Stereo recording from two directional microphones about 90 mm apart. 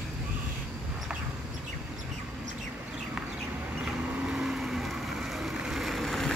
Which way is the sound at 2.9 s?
10° right (ahead or behind).